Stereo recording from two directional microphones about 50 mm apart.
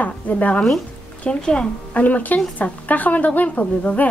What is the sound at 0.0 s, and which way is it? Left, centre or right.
Speech, left.